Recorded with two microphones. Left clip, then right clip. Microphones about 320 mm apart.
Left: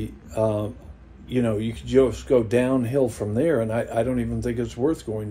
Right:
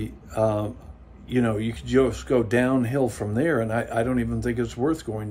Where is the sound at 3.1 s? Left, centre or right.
Centre.